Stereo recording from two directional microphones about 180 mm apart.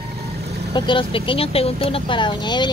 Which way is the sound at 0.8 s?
25° left (ahead or behind).